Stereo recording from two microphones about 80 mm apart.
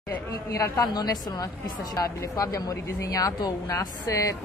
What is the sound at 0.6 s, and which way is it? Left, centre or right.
Speech, left.